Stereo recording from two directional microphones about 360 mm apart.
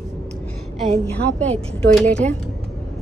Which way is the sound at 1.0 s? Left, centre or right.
Centre.